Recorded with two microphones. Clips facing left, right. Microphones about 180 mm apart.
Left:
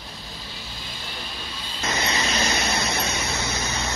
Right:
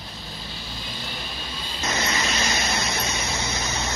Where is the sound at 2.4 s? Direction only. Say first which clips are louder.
Left 2 dB; 55° left (ahead or behind).